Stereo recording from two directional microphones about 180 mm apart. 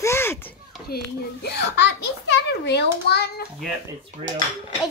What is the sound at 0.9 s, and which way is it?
Speech, 60° left (ahead or behind).